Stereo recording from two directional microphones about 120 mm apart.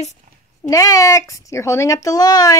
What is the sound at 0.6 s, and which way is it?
Speech, 30° left (ahead or behind).